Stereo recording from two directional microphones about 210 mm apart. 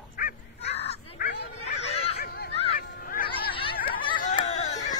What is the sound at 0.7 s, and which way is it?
Crow, 30° left (ahead or behind).